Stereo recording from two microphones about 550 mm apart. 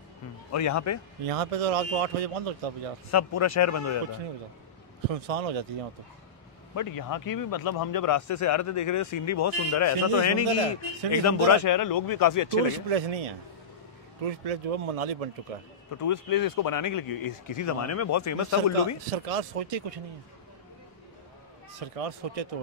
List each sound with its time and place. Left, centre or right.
0.5 s a man's voice: left
1.2 s speech: right
3.1 s a man's voice: left
5.1 s speech: right
6.7 s a man's voice: left
12.9 s speech: right
16.0 s a man's voice: left
19.0 s speech: right
21.7 s speech: right